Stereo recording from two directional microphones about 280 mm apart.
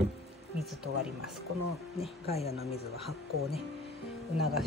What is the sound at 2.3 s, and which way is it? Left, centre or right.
Speech, left.